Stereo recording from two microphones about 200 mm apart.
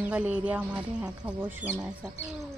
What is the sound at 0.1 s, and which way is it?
Speech, 5° right (ahead or behind).